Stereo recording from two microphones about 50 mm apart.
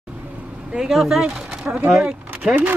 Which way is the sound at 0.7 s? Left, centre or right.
Centre.